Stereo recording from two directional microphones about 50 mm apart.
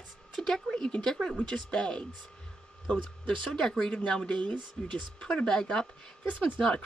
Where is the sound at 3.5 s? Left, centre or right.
Centre.